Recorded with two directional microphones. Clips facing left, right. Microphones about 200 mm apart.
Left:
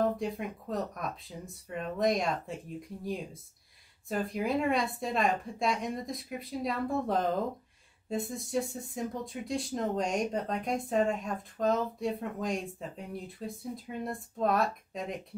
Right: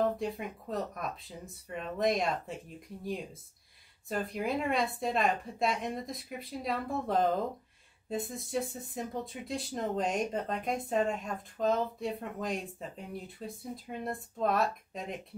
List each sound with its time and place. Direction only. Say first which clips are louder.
0.0 s speech: left 1 dB; centre (ahead or behind)
4.1 s speech: left 2 dB; centre (ahead or behind)